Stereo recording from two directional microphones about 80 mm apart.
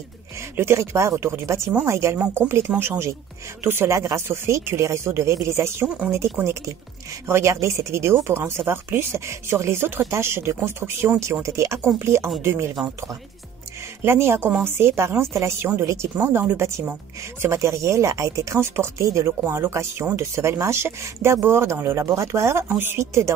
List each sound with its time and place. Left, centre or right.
0.4 s speech: right
3.6 s speech: right
14.0 s speech: right